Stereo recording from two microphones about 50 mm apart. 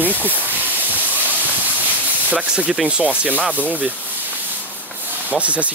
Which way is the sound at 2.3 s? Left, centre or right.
Right.